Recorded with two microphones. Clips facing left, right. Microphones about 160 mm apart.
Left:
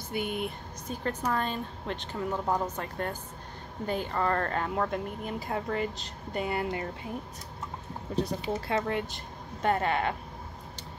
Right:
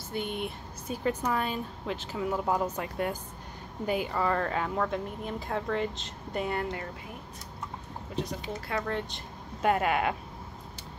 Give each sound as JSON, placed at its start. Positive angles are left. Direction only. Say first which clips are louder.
{"t": 0.1, "sound": "speech", "louder": "left 1 dB", "side_deg": 5}
{"t": 0.8, "sound": "speech", "louder": "right 2 dB", "side_deg": -10}
{"t": 8.6, "sound": "speech", "louder": "left 2 dB", "side_deg": 25}
{"t": 9.1, "sound": "a woman's voice", "louder": "left 1 dB", "side_deg": -5}